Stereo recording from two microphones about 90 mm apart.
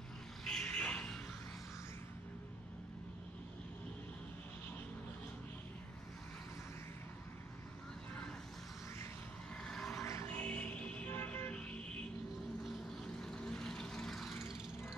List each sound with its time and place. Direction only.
0.5 s vehicle: 10° left (ahead or behind)
9.6 s vehicle: 5° left (ahead or behind)
10.2 s music: 20° left (ahead or behind)
11.1 s vehicle: 25° left (ahead or behind); by 14.4 s 5° left (ahead or behind)